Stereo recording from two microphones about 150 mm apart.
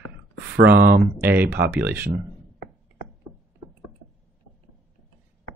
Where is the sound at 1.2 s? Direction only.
10° right (ahead or behind).